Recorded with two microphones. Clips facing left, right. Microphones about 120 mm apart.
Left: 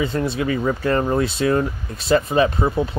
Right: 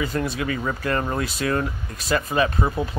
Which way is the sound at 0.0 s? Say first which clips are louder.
Left 4 dB; 25° left (ahead or behind).